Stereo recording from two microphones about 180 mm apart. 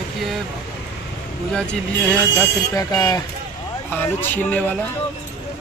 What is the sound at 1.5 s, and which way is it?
Speech, 5° left (ahead or behind).